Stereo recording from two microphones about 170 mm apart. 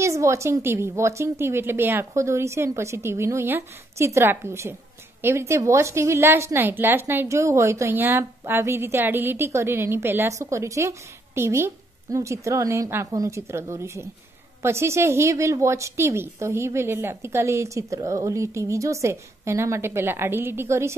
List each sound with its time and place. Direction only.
0.0 s a woman's voice: 15° right (ahead or behind)